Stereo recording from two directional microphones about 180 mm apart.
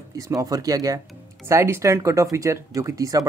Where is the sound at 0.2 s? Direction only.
20° right (ahead or behind).